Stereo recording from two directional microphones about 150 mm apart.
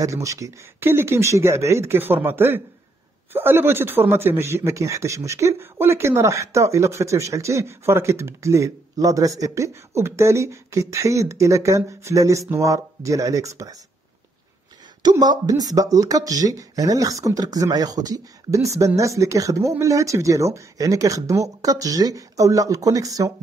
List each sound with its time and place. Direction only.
0.0 s speech: 20° right (ahead or behind)
15.0 s speech: 30° right (ahead or behind)